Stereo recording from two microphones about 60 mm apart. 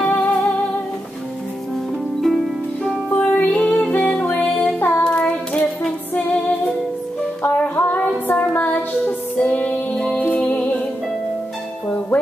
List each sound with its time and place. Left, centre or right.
0.0 s music: left
2.2 s harp: centre
3.1 s music: left
4.7 s child singing: left
5.0 s child singing: centre
6.1 s music: left